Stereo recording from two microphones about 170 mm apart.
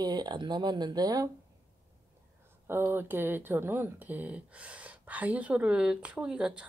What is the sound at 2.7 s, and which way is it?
Speech, 15° right (ahead or behind).